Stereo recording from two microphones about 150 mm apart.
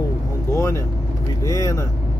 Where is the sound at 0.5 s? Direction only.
20° left (ahead or behind).